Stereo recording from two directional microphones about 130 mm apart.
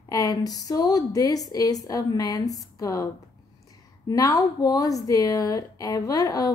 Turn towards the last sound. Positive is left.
turn(degrees=25)  # may be behind; listen again after turning